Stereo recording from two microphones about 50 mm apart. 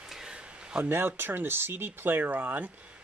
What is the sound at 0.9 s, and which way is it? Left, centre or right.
Speech, right.